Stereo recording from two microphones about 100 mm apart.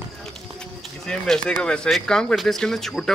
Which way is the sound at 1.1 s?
10° left (ahead or behind).